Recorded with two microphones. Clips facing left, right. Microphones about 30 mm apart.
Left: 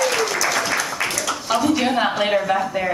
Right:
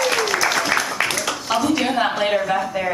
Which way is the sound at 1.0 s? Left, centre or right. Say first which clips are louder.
Right 2 dB; right.